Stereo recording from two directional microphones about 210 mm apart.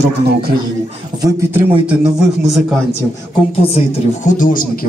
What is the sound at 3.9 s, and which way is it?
Speech, 40° left (ahead or behind).